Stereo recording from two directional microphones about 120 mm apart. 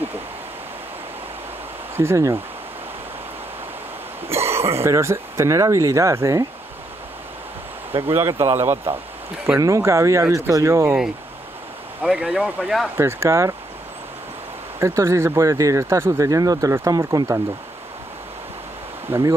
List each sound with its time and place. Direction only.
2.0 s speech: 25° right (ahead or behind)
4.3 s speech: 20° right (ahead or behind)
8.1 s speech: 25° right (ahead or behind)
9.5 s speech: 25° right (ahead or behind)
12.1 s speech: 5° right (ahead or behind)
12.9 s speech: 20° right (ahead or behind)
14.8 s speech: 20° right (ahead or behind)
19.0 s speech: 20° right (ahead or behind)